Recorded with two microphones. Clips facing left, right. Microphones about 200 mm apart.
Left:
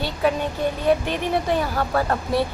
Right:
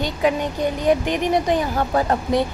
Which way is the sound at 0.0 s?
15° right (ahead or behind).